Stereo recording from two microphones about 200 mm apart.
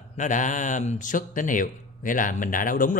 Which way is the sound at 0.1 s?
40° left (ahead or behind).